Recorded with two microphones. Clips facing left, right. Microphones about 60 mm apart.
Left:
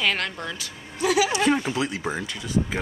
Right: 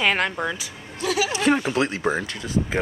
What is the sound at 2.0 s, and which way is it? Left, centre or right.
Speech, right.